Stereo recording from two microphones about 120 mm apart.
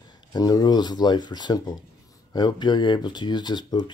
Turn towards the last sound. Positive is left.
turn(degrees=35)  # may be behind; listen again after turning